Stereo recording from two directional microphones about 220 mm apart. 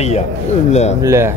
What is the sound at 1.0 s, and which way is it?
Speech, 15° right (ahead or behind).